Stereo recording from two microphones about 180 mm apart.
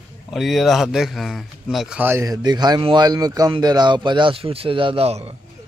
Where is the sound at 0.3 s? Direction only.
Centre (ahead or behind); by 5.3 s 35° right (ahead or behind).